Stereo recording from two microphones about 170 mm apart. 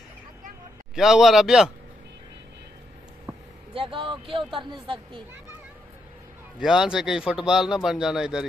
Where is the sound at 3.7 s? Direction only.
30° right (ahead or behind).